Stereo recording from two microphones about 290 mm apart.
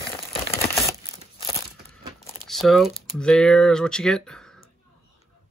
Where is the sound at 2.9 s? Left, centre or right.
Centre.